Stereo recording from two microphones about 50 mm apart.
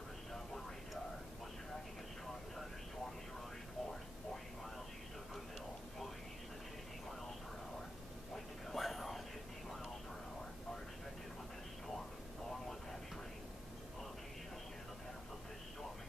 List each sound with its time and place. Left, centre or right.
8.6 s whispering: centre